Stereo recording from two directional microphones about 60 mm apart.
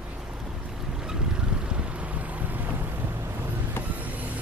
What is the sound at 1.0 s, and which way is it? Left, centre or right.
Vehicle, centre.